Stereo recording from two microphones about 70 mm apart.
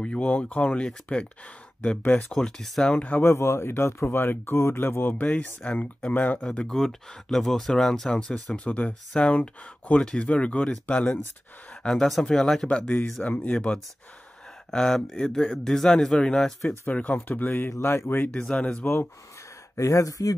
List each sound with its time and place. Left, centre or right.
0.0 s speech: centre
2.0 s speech: left
2.3 s speech: centre
3.2 s speech: left
6.4 s speech: centre
8.6 s speech: left
12.6 s speech: centre
14.7 s speech: centre
16.8 s speech: left
18.5 s speech: centre
19.8 s speech: left